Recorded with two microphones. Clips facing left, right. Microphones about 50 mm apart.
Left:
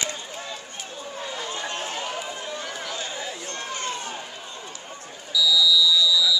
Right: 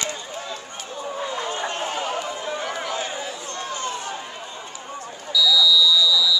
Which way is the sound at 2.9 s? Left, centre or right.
Right.